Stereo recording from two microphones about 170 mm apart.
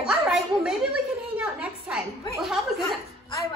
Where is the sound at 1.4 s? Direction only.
5° right (ahead or behind).